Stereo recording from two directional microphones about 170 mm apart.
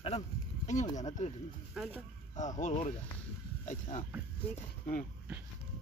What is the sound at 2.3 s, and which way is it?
Speech, 45° left (ahead or behind).